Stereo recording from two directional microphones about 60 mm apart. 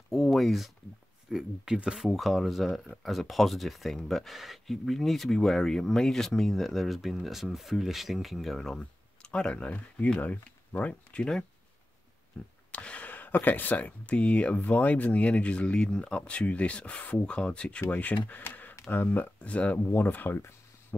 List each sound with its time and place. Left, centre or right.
0.1 s speech: centre
8.7 s speech: centre
12.4 s speech: centre
19.9 s speech: left